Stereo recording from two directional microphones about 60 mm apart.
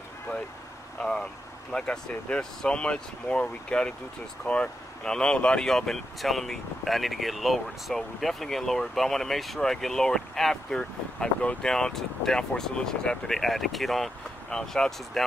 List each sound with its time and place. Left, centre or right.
1.0 s speech: centre